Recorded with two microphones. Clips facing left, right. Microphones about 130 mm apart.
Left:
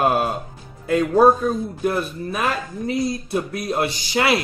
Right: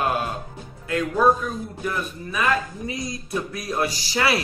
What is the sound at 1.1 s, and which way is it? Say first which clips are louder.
Speech: left 5 dB; 35° left (ahead or behind).